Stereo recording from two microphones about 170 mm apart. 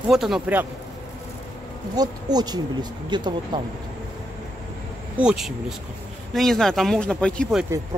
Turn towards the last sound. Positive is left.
turn(degrees=5)  # may be behind; listen again after turning